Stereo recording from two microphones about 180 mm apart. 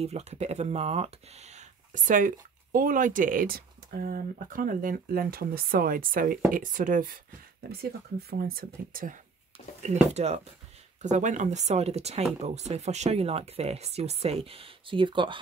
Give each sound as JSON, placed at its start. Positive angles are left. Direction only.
{"t": 0.0, "sound": "speech", "side_deg": -35}
{"t": 10.1, "sound": "speech", "side_deg": -35}